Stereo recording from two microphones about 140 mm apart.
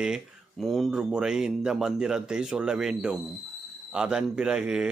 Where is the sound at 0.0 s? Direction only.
Centre (ahead or behind).